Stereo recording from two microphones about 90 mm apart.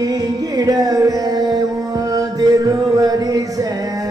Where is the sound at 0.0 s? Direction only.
45° right (ahead or behind).